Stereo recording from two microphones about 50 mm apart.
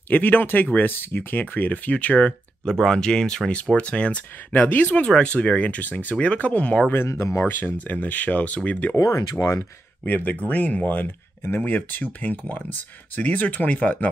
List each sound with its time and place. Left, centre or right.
0.1 s speech: left
2.7 s speech: centre; by 5.0 s left
5.0 s speech: centre
7.1 s speech: left
7.3 s speech: left
8.9 s speech: left
10.0 s speech: left
11.4 s speech: left
11.7 s speech: left